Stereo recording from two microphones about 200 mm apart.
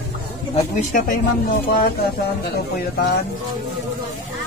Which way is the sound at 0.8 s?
45° left (ahead or behind).